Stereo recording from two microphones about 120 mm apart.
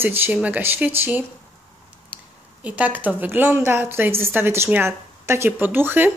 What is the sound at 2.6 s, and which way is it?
A woman's voice, 10° right (ahead or behind).